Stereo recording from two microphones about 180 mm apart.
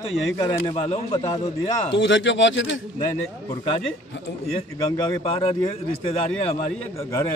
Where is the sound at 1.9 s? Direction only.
85° left.